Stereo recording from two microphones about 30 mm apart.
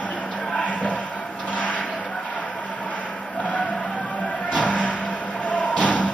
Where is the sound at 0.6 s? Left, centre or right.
Left.